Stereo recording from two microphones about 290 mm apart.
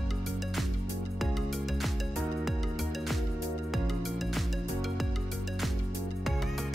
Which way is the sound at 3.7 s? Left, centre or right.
Centre.